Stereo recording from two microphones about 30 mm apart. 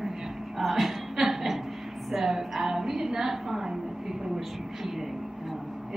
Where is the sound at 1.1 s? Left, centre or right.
Centre.